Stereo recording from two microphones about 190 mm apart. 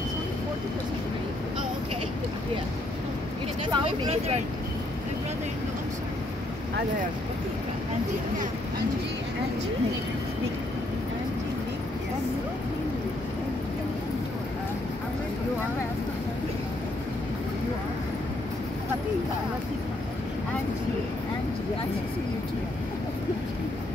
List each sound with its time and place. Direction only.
3.7 s speech: 25° right (ahead or behind)